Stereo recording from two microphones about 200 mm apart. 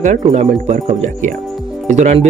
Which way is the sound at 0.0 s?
35° right (ahead or behind).